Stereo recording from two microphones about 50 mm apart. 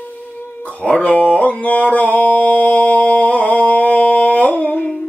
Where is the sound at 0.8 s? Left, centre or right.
Left.